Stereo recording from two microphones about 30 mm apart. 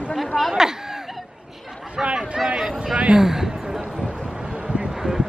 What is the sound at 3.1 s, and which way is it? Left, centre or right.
Speech, centre.